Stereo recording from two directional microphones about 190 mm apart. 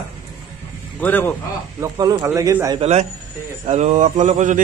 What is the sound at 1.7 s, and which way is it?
Speech, 20° right (ahead or behind).